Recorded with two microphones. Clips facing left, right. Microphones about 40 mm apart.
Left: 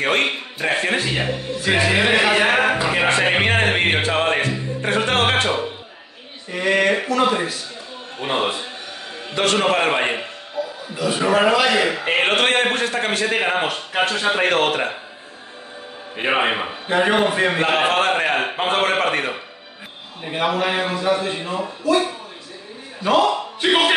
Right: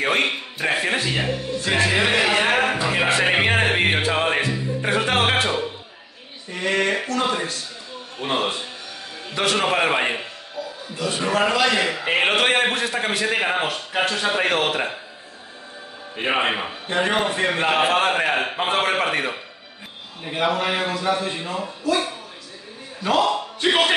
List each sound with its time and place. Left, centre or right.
0.0 s a man's voice: centre
1.0 s a man's voice: centre
6.5 s a man's voice: centre
9.3 s a man's voice: centre
11.0 s a man's voice: centre
13.9 s a man's voice: centre
14.5 s a man's voice: centre
16.2 s a man's voice: centre
23.6 s a man's voice: centre